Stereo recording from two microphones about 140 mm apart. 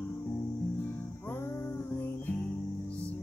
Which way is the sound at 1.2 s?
15° left (ahead or behind).